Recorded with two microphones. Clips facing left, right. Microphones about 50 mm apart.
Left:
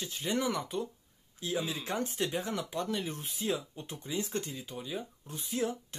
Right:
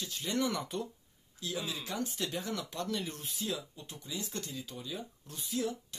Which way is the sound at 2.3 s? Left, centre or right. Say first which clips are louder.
Left 3 dB; left.